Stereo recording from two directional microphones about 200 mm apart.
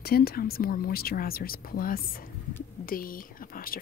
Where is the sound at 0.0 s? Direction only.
50° left (ahead or behind).